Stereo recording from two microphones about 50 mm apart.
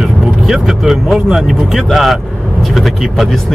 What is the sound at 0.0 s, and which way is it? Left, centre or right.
Vehicle, centre.